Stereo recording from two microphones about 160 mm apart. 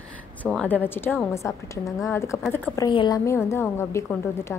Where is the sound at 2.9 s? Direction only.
30° left (ahead or behind).